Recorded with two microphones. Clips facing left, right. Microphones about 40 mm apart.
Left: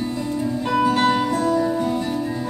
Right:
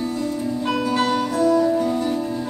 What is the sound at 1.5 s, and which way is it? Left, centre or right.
Music, centre.